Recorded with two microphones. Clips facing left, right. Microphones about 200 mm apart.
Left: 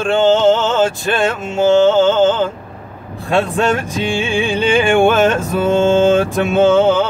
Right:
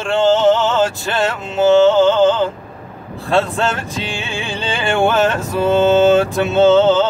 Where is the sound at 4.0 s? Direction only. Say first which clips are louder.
Left 7 dB; 15° left (ahead or behind).